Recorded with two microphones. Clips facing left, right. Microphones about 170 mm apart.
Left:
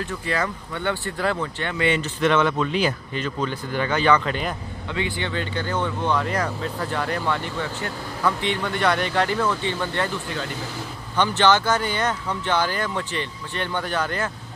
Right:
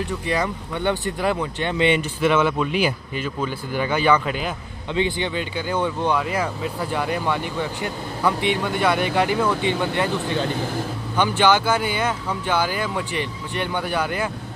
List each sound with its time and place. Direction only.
0.3 s speech: 15° right (ahead or behind)
2.1 s speech: 10° right (ahead or behind)
4.9 s speech: 20° right (ahead or behind)